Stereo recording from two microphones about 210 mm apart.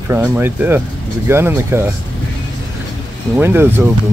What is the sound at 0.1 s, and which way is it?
Speech, 10° right (ahead or behind).